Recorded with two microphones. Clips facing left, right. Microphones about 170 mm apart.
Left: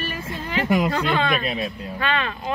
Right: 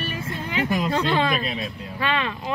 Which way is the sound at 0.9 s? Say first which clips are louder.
Even; 30° right (ahead or behind).